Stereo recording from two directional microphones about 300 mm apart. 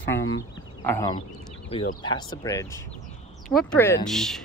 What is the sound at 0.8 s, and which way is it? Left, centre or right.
A woman's voice, centre.